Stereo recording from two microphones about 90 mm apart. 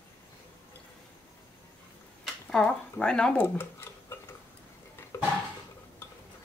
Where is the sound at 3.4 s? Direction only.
25° left (ahead or behind).